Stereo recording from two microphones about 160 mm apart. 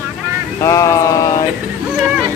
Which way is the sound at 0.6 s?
20° left (ahead or behind).